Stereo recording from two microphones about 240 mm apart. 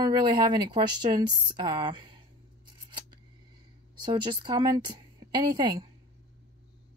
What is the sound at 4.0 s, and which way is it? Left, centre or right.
A woman's voice, centre.